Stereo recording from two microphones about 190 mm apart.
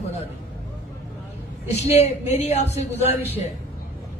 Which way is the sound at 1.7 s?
35° left (ahead or behind).